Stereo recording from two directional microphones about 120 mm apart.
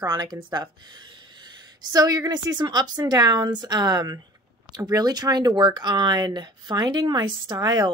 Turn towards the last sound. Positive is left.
turn(degrees=-35)  # may be behind; listen again after turning